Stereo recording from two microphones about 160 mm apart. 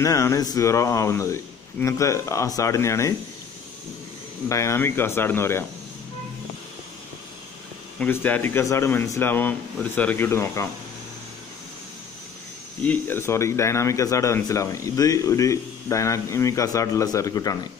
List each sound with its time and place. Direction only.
0.0 s speech: 20° left (ahead or behind)
4.5 s speech: 20° left (ahead or behind)
8.0 s speech: 10° left (ahead or behind)
12.8 s speech: 10° left (ahead or behind)